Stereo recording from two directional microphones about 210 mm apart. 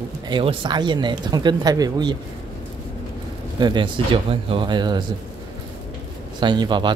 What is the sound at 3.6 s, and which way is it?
Speech, 20° right (ahead or behind).